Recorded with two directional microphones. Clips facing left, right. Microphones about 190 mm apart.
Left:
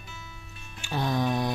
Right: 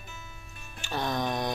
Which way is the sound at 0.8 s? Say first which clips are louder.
Left 3 dB; 10° left (ahead or behind).